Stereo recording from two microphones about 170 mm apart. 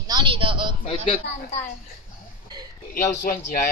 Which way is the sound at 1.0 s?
35° left (ahead or behind).